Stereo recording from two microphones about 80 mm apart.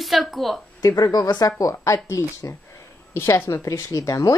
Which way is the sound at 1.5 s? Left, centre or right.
Left.